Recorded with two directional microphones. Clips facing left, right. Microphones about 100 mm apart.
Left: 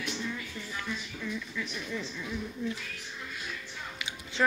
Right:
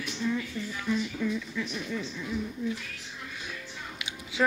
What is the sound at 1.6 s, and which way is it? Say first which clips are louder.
Speech: right 3 dB; 20° right (ahead or behind).